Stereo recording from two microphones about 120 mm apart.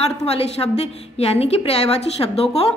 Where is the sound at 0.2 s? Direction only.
60° left (ahead or behind).